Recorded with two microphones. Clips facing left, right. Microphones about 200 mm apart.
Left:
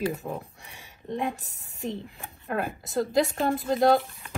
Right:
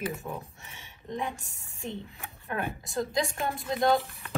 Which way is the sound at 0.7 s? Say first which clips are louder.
Left 4 dB; 35° left (ahead or behind).